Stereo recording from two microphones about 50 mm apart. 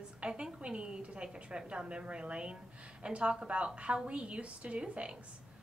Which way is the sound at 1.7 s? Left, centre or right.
Right.